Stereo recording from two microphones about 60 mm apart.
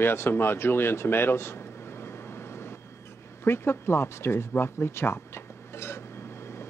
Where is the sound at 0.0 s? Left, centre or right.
Left.